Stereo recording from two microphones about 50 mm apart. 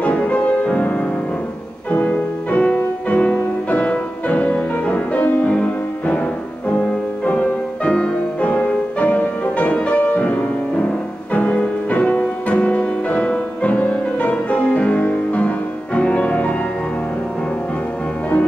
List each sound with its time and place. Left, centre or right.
0.0 s music: left
7.2 s music: left